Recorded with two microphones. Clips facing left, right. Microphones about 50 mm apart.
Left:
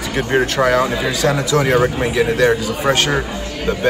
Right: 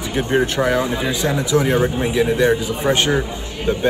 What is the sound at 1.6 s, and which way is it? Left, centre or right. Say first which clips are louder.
Speech: left 2 dB; left.